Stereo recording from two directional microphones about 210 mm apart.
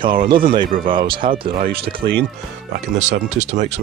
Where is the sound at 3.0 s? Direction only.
35° right (ahead or behind).